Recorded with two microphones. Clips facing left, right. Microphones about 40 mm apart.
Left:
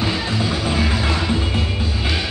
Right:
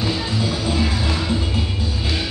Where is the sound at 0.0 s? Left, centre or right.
Left.